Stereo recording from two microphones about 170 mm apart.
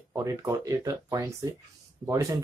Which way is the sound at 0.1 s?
20° right (ahead or behind).